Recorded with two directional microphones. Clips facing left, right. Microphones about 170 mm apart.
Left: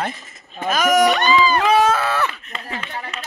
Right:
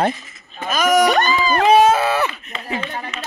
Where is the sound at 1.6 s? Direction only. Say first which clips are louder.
Right 4 dB; 20° right (ahead or behind).